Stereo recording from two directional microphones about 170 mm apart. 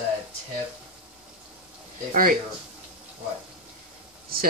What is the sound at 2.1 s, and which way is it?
Speech, 55° right (ahead or behind).